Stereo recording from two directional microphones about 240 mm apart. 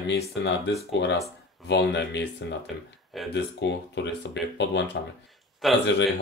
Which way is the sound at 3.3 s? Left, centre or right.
Left.